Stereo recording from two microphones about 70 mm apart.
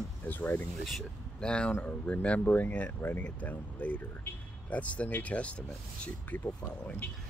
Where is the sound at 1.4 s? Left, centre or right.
Centre.